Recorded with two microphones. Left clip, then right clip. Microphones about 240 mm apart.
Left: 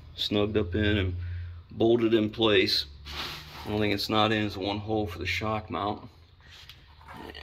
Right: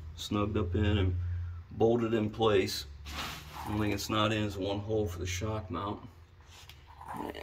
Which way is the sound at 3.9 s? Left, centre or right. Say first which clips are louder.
Left 5 dB; centre.